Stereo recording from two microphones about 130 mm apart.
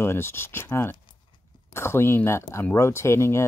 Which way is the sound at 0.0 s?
20° left (ahead or behind).